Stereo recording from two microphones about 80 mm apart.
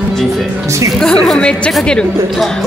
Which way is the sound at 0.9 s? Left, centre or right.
Centre.